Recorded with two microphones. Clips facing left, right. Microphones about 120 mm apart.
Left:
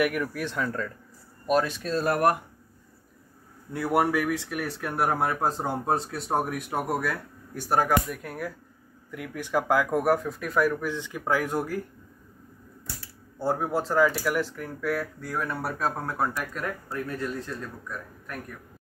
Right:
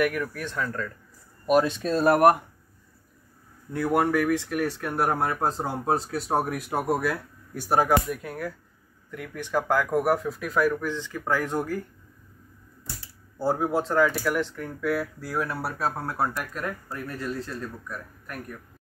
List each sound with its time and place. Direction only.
0.0 s speech: 5° left (ahead or behind)
1.5 s speech: 15° right (ahead or behind)
3.7 s speech: 5° left (ahead or behind)
10.9 s speech: 15° left (ahead or behind)
13.4 s speech: centre (ahead or behind)